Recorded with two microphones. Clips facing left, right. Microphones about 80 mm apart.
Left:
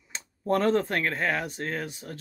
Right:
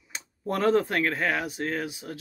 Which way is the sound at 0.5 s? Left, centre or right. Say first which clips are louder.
Even; centre.